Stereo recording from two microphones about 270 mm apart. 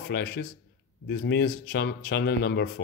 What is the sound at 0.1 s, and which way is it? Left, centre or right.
Speech, left.